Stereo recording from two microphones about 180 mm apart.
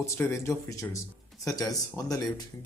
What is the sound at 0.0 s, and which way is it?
Speech, 15° left (ahead or behind).